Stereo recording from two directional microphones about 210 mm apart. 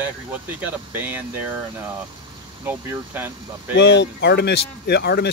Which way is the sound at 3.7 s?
55° left (ahead or behind).